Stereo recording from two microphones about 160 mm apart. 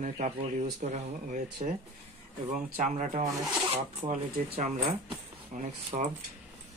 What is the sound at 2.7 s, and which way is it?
Speech, 50° right (ahead or behind).